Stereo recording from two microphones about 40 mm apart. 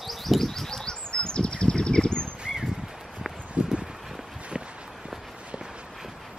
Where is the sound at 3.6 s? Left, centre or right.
Centre.